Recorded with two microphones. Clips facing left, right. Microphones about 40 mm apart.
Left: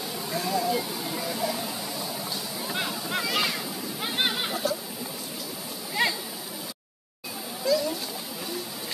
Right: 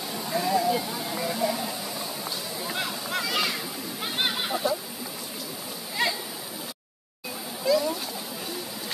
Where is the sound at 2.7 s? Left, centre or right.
Centre.